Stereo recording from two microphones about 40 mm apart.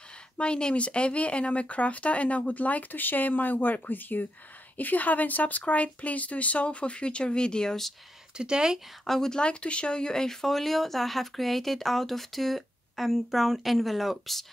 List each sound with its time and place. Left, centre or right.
0.4 s speech: left
8.4 s speech: right
9.0 s speech: centre
9.3 s speech: left; by 14.4 s centre